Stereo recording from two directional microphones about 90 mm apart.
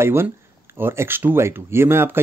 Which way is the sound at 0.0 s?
25° right (ahead or behind).